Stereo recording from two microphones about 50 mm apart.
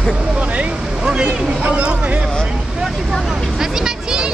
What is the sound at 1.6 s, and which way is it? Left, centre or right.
Speech, right.